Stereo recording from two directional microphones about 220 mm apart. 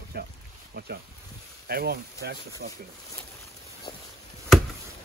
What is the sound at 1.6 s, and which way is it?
Speech, 45° right (ahead or behind).